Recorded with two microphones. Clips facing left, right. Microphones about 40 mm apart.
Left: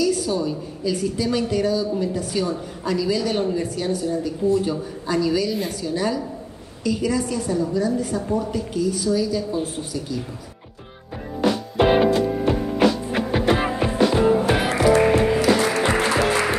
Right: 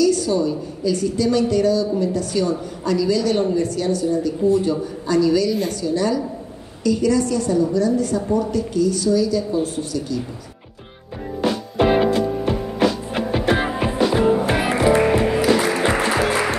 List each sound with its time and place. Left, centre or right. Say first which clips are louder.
0.0 s a woman's voice: right 4 dB; centre
13.7 s music: even; centre
14.4 s music: right 1 dB; right
15.0 s music: even; centre